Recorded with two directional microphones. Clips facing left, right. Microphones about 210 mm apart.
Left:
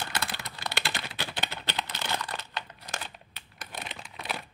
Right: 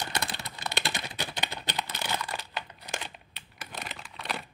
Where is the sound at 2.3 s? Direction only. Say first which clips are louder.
Right 1 dB; 10° right (ahead or behind).